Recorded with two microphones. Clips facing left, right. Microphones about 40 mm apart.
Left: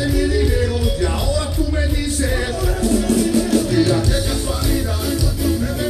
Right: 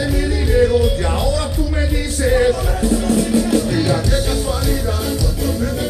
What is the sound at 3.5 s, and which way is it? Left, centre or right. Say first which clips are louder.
Music: left 1 dB; centre.